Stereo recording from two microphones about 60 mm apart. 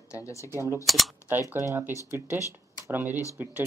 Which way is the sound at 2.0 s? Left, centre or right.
Right.